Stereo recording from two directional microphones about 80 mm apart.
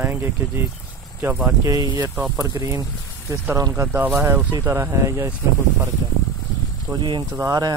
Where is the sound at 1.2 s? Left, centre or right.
Right.